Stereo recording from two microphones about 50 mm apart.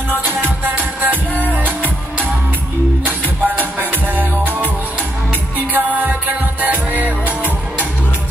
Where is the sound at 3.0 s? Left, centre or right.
Right.